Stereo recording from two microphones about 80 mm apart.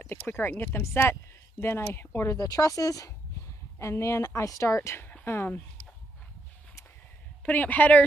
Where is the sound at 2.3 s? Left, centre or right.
Left.